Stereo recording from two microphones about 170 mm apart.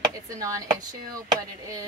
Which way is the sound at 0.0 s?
20° right (ahead or behind).